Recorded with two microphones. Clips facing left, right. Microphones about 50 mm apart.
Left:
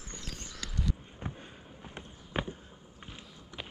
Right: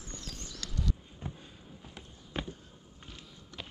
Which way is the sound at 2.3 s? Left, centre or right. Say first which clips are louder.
Left 4 dB; left.